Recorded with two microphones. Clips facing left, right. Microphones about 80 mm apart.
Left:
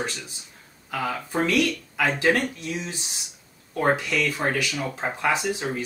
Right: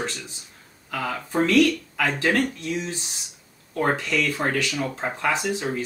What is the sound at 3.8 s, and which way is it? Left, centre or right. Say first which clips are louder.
Speech: even; centre.